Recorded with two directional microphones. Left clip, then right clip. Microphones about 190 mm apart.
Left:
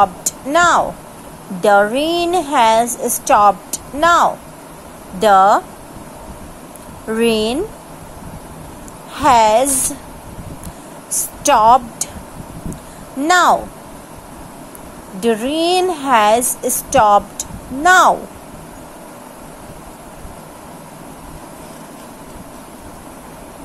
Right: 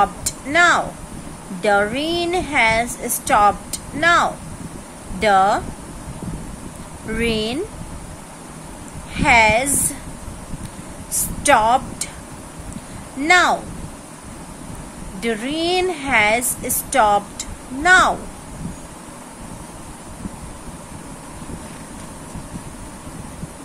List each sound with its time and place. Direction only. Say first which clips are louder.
0.0 s a woman's voice: left 4 dB; 20° left (ahead or behind)
7.2 s a woman's voice: left 6 dB; 25° left (ahead or behind)
9.1 s a woman's voice: left 3 dB; 25° left (ahead or behind)
11.1 s a woman's voice: left 1 dB; 20° left (ahead or behind)
13.3 s a woman's voice: left 3 dB; 20° left (ahead or behind)
15.1 s a woman's voice: left 6 dB; 20° left (ahead or behind)